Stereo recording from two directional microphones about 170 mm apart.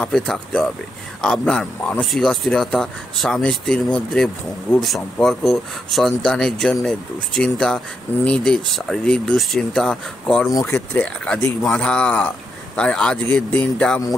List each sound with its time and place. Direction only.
0.0 s a man's voice: 5° left (ahead or behind)